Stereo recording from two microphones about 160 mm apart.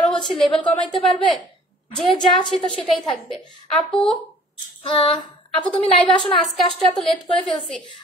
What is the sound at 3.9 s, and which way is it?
Speech, centre (ahead or behind).